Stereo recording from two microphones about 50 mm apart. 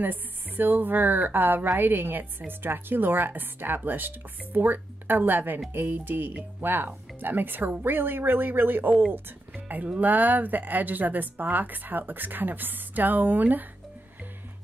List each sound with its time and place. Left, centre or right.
0.0 s a woman's voice: right